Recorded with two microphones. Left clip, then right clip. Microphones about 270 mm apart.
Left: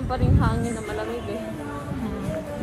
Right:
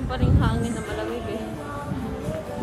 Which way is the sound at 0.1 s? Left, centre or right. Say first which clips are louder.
Left 1 dB; centre.